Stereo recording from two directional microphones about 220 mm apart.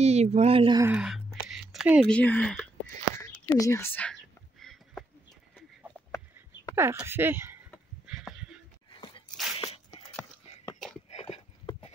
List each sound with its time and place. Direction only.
0.0 s speech: 30° right (ahead or behind)
0.8 s speech: 5° right (ahead or behind)
3.2 s whispering: 15° left (ahead or behind)
6.7 s speech: 10° right (ahead or behind)
8.1 s heart sounds: 5° right (ahead or behind)
9.6 s a sound: 25° left (ahead or behind)
11.1 s clip-clop: 30° left (ahead or behind)